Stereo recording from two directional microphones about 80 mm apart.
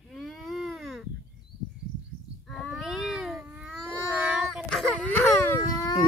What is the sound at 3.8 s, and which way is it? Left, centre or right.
Cat, right.